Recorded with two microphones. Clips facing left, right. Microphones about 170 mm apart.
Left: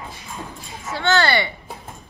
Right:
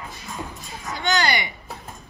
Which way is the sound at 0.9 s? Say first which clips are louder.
Left 4 dB; 15° right (ahead or behind).